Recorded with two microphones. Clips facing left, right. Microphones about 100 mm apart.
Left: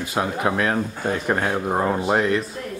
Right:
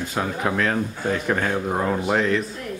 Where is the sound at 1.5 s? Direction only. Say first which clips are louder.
Left 1 dB; 20° left (ahead or behind).